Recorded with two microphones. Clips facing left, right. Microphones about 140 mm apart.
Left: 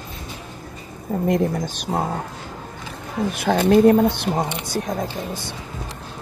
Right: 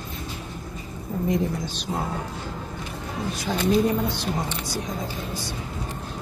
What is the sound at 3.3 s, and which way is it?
Speech, 60° left (ahead or behind).